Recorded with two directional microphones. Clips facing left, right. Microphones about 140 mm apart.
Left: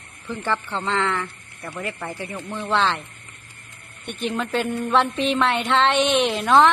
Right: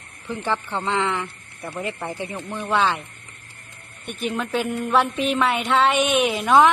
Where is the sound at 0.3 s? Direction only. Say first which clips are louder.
Even; 15° right (ahead or behind).